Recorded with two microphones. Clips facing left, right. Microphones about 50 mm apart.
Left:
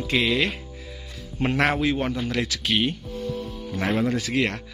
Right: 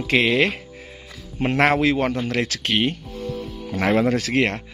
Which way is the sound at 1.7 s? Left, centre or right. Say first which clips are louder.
Right 4 dB; right.